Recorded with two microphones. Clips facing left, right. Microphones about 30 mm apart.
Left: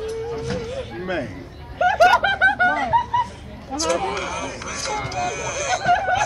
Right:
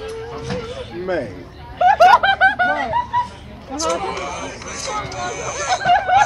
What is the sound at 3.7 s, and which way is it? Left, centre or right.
Speech, right.